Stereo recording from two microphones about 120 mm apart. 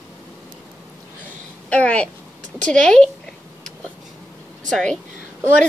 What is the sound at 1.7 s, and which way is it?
Speech, 10° left (ahead or behind).